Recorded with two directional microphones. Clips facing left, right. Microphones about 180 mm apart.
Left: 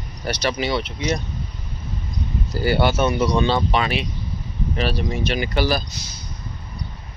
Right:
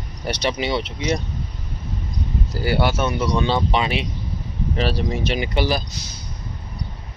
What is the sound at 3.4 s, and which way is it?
Speech, 15° right (ahead or behind).